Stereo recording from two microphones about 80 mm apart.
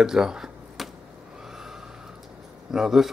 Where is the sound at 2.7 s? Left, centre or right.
Centre.